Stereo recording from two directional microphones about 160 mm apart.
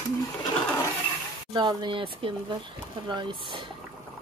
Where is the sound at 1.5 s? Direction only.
30° right (ahead or behind).